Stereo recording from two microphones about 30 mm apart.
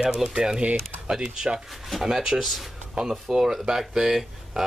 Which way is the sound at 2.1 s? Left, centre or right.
Right.